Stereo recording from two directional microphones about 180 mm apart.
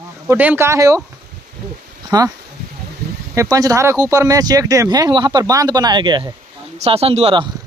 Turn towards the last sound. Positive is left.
turn(degrees=-30)  # may be behind; listen again after turning